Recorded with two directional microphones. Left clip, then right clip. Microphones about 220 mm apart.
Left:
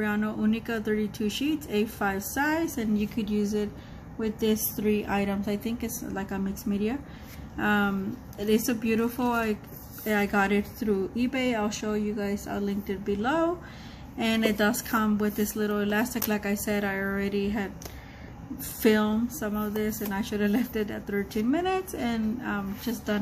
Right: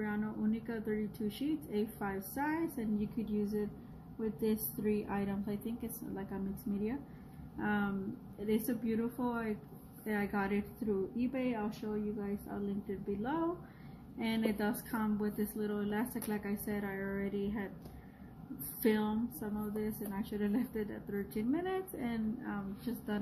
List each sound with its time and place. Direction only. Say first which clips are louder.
0.0 s speech: left 10 dB; 20° left (ahead or behind)
14.1 s speech: left 10 dB; 20° left (ahead or behind)
18.8 s speech: left 10 dB; 20° left (ahead or behind)